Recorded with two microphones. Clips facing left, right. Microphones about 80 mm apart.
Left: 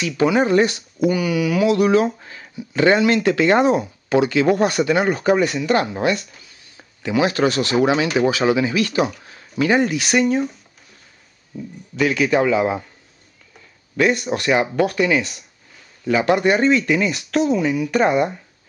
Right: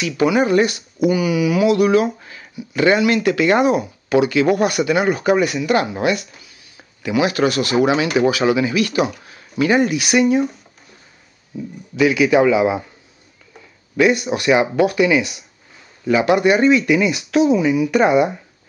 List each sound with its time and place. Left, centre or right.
0.2 s speech: left
0.9 s speech: centre
1.8 s speech: left
4.9 s speech: centre
7.0 s speech: left
9.8 s speech: centre
13.9 s speech: centre